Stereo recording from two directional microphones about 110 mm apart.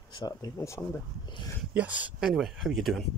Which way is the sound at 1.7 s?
15° right (ahead or behind).